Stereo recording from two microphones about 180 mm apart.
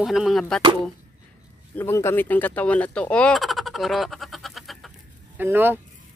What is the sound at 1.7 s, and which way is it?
Speech, 15° left (ahead or behind).